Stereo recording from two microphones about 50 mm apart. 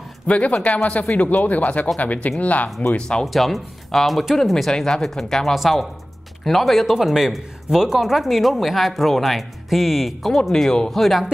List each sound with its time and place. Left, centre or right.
0.3 s speech: left
3.0 s speech: centre
3.3 s speech: centre
10.5 s speech: centre